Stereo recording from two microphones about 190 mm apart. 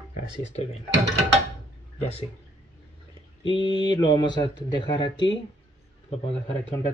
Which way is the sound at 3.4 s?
25° left (ahead or behind).